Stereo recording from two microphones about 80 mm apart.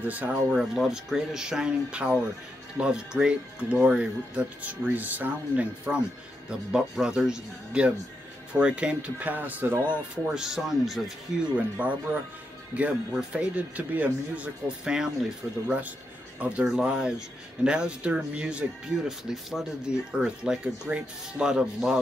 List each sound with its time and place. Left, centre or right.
0.0 s speech: centre
0.6 s speech: centre; by 10.3 s right
10.3 s speech: centre
11.8 s speech: centre
13.1 s speech: centre